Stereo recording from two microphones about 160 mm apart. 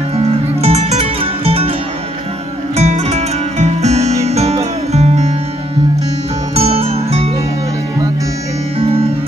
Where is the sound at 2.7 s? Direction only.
45° right (ahead or behind).